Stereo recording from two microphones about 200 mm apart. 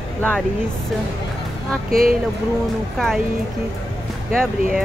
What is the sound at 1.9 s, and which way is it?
Speech, 45° right (ahead or behind).